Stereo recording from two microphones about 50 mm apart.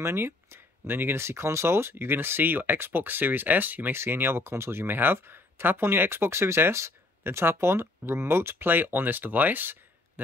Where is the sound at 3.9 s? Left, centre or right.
Right.